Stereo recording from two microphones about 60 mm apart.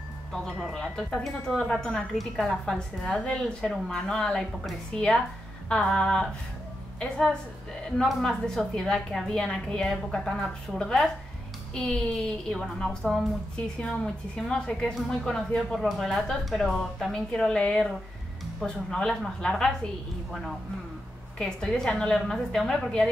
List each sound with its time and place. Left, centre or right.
0.3 s a woman's voice: centre
8.0 s speech: centre
21.4 s speech: centre